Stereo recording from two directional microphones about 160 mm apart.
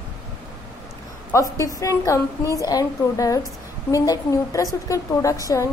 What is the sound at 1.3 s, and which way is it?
A woman's voice, 20° left (ahead or behind).